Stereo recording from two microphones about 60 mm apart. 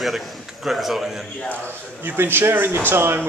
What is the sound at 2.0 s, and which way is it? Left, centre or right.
Speech, right.